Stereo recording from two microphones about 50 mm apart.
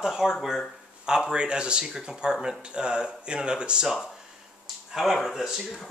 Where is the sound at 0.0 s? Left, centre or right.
Centre.